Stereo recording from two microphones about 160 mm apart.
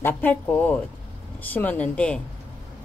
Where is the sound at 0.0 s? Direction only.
10° left (ahead or behind).